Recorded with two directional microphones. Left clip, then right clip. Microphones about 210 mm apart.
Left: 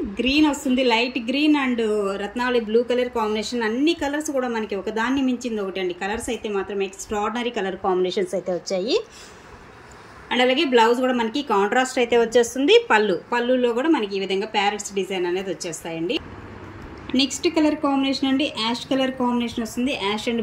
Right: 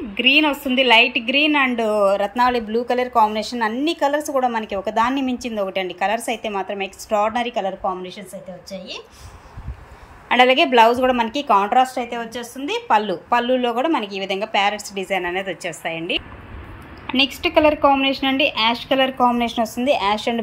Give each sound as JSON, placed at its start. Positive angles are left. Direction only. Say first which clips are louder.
{"t": 0.1, "sound": "a woman's voice", "louder": "right 5 dB", "side_deg": 0}
{"t": 7.8, "sound": "a woman's voice", "louder": "left 4 dB", "side_deg": 15}
{"t": 10.2, "sound": "a woman's voice", "louder": "right 5 dB", "side_deg": -5}